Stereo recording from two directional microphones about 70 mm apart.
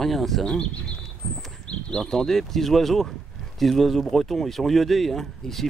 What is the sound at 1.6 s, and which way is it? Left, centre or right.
Speech, centre.